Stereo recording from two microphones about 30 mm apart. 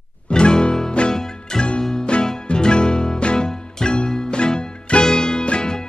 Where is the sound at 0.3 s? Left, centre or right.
Left.